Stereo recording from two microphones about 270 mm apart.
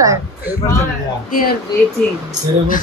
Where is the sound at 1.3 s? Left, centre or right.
Left.